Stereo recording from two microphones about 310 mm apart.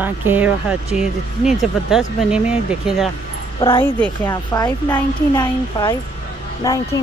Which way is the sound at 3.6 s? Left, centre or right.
Centre.